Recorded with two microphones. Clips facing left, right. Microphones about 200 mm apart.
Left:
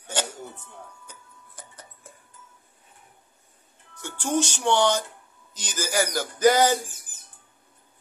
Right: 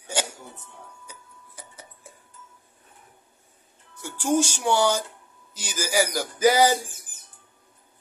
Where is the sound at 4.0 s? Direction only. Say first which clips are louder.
Right 3 dB; 10° right (ahead or behind).